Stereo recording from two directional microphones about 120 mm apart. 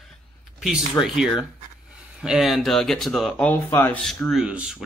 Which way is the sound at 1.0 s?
5° right (ahead or behind).